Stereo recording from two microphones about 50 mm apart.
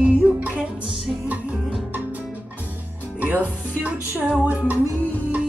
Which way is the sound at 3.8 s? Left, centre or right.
Right.